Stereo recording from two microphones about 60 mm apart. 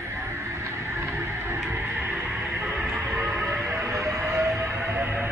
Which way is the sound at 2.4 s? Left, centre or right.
Centre.